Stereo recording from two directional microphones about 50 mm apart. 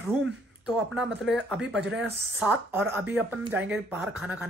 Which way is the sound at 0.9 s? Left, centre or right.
Centre.